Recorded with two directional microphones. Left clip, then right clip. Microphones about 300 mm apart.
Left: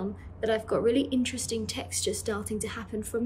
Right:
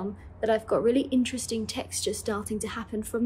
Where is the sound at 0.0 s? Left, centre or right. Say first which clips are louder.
Right 2 dB; centre.